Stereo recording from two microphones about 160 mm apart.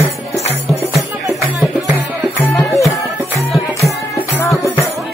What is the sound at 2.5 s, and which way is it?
Music, 20° left (ahead or behind).